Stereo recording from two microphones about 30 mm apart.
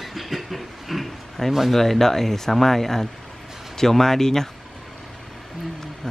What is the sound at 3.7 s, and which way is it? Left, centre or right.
Speech, centre.